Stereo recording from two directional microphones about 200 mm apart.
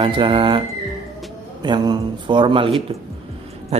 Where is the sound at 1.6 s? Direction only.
20° right (ahead or behind).